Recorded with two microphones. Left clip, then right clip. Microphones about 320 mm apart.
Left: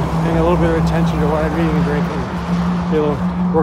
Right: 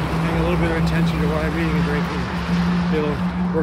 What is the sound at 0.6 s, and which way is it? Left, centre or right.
Speech, centre.